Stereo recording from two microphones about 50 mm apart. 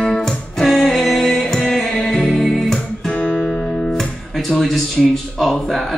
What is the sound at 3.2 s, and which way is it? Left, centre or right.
Guitar, left.